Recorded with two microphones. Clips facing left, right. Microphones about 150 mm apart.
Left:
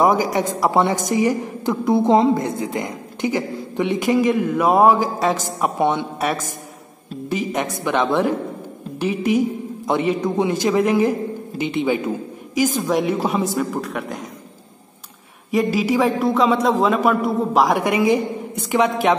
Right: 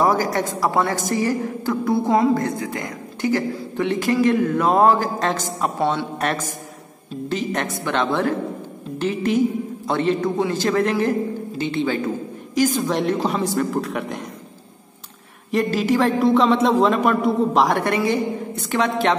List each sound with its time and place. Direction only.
0.0 s a woman's voice: 15° left (ahead or behind)
7.2 s a woman's voice: 10° left (ahead or behind)
15.5 s a man's voice: 5° left (ahead or behind)